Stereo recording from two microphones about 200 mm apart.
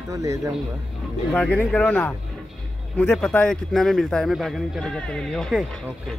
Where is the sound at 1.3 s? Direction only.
5° left (ahead or behind).